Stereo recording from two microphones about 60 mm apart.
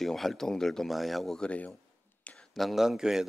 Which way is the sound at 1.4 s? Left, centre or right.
Centre.